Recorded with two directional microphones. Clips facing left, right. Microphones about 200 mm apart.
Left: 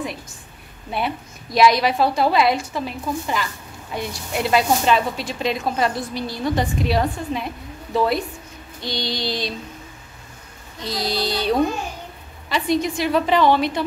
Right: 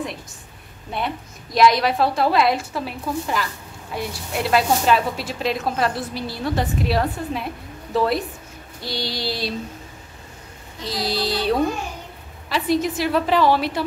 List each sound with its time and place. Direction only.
0.9 s a woman's voice: 5° left (ahead or behind)
8.8 s child singing: 5° right (ahead or behind)
10.8 s speech: centre (ahead or behind)